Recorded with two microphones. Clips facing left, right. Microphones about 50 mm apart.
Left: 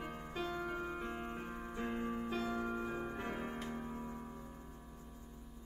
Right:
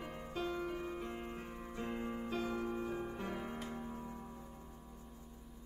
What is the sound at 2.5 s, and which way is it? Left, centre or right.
Music, left.